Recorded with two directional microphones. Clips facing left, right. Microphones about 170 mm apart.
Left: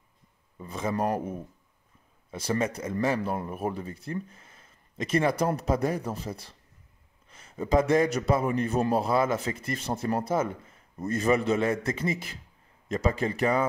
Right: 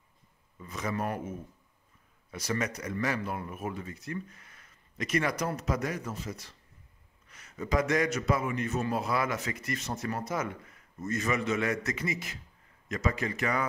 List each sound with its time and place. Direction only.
0.6 s a man's voice: 30° left (ahead or behind)